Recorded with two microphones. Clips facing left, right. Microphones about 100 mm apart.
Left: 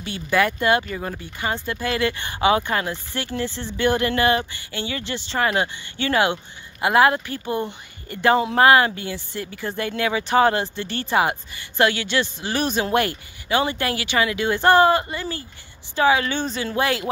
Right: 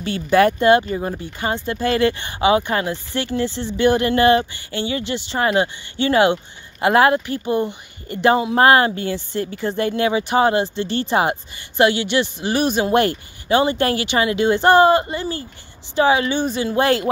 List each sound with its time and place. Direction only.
0.0 s speech: 35° right (ahead or behind); by 12.9 s 15° right (ahead or behind)
13.5 s speech: 25° right (ahead or behind)
16.7 s speech: 35° right (ahead or behind)